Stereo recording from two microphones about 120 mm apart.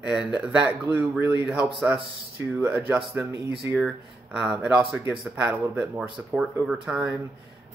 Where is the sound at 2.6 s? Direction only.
15° right (ahead or behind).